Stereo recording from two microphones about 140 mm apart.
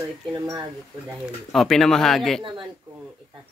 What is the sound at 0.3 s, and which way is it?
Speech, 30° right (ahead or behind).